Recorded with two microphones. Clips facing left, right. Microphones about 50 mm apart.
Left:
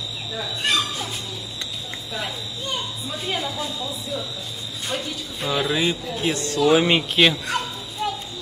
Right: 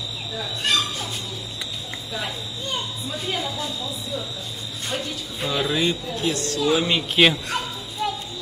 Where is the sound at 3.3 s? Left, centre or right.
Left.